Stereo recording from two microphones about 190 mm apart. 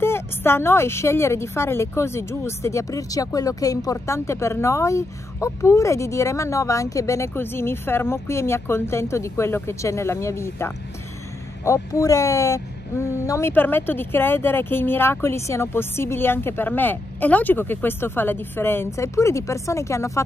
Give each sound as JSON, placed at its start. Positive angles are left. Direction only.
{"t": 0.0, "sound": "a woman's voice", "side_deg": 10}